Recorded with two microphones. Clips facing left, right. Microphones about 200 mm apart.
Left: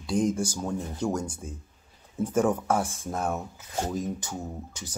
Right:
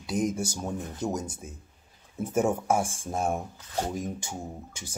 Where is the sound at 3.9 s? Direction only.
25° right (ahead or behind).